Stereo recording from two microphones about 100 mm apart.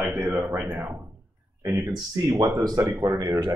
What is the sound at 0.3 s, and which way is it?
A man's voice, 25° right (ahead or behind).